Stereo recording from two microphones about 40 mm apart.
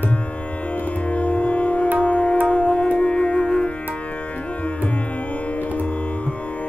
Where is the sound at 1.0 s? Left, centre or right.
Left.